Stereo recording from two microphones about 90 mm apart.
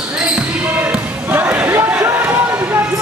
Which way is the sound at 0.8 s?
20° right (ahead or behind).